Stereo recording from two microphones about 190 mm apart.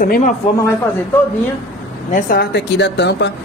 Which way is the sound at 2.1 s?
55° left (ahead or behind).